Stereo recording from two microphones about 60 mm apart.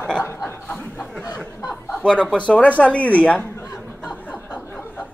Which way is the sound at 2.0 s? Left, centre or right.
Centre.